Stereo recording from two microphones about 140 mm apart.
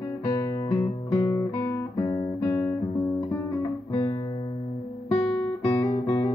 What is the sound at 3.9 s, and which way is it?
Guitar, 30° left (ahead or behind).